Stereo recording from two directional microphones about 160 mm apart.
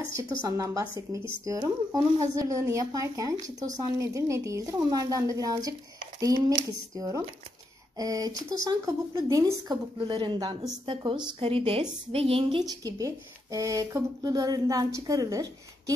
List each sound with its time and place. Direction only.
0.1 s a woman's voice: 20° right (ahead or behind)